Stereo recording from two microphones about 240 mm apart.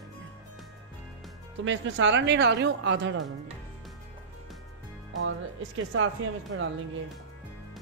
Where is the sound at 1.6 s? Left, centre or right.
Right.